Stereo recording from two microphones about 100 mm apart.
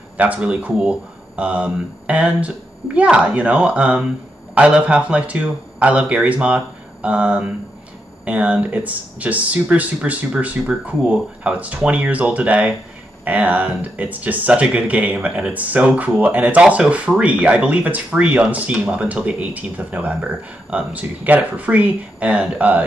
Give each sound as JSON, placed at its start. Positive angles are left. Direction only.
{"t": 0.2, "sound": "speech", "side_deg": -15}